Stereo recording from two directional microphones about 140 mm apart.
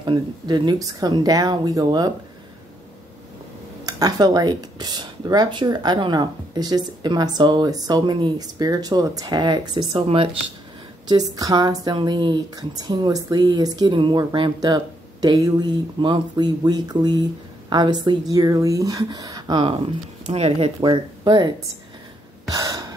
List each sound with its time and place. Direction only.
0.0 s speech: 30° right (ahead or behind)
3.8 s speech: 25° right (ahead or behind); by 10.3 s 40° right (ahead or behind)
11.1 s speech: 25° right (ahead or behind)
20.2 s speech: 45° right (ahead or behind)
20.9 s speech: 35° right (ahead or behind)
22.5 s gasp: 25° right (ahead or behind)